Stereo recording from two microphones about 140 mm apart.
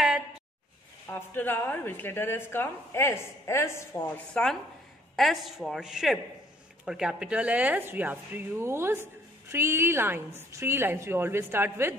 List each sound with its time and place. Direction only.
1.1 s a woman's voice: 15° left (ahead or behind); by 11.9 s 15° right (ahead or behind)